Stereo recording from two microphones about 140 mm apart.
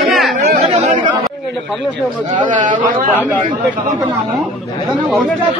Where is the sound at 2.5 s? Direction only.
65° right (ahead or behind).